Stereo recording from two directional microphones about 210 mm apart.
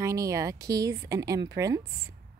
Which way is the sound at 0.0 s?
15° right (ahead or behind).